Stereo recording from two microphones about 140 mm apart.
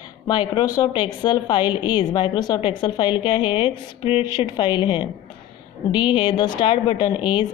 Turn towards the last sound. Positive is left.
turn(degrees=35)  # may be behind; listen again after turning